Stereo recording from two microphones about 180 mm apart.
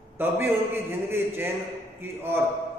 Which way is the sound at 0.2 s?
10° right (ahead or behind).